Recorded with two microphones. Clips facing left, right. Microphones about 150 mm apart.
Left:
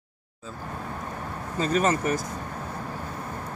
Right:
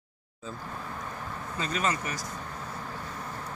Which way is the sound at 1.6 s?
45° left (ahead or behind).